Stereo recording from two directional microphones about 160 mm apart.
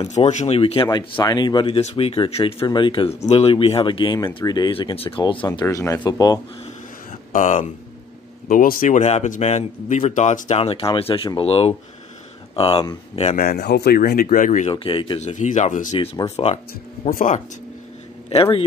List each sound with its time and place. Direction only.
0.0 s speech: 45° left (ahead or behind)
0.8 s speech: 25° left (ahead or behind)
5.6 s speech: 20° left (ahead or behind)
7.3 s a man's voice: 55° left (ahead or behind)
13.4 s speech: 80° left; by 14.7 s 55° left (ahead or behind)
14.7 s speech: 35° left (ahead or behind)
15.1 s a man's voice: 50° left (ahead or behind)
17.1 s speech: 60° left (ahead or behind)
18.3 s speech: 35° left (ahead or behind)